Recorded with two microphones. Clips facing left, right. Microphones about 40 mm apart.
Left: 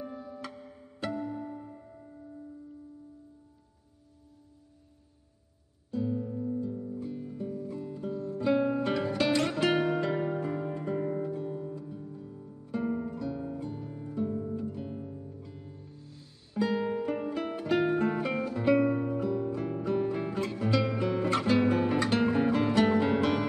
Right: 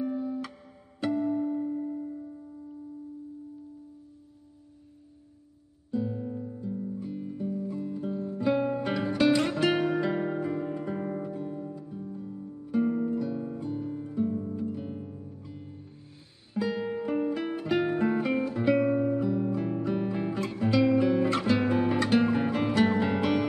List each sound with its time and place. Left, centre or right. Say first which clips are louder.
0.0 s music: right 9 dB; centre
5.9 s music: even; centre
8.1 s music: right 2 dB; centre
8.4 s music: even; centre
16.5 s music: left 1 dB; centre
18.3 s music: right 3 dB; centre
18.6 s music: even; centre
20.6 s guitar: right 7 dB; centre